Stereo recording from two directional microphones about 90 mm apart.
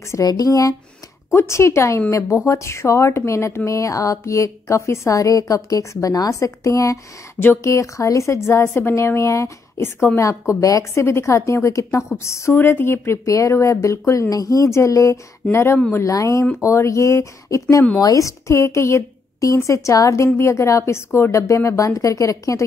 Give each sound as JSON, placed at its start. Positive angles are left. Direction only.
{"t": 0.1, "sound": "speech", "side_deg": 40}